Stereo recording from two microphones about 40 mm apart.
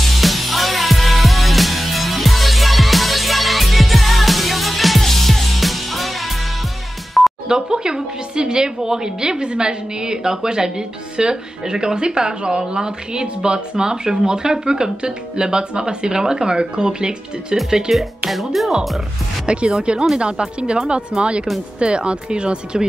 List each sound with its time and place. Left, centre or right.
0.0 s music: centre
7.4 s a woman's voice: centre
18.3 s speech: centre
19.4 s a woman's voice: right